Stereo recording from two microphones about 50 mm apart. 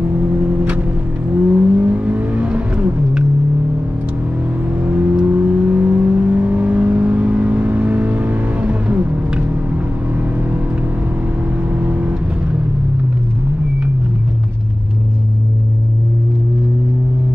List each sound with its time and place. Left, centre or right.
0.0 s car: right
1.3 s vehicle: right
4.7 s vehicle: right
11.7 s vehicle: right